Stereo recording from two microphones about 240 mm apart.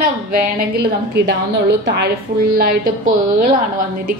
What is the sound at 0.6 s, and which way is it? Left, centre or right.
A woman's voice, right.